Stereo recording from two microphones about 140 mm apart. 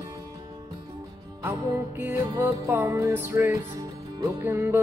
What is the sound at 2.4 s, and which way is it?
Music, 15° right (ahead or behind).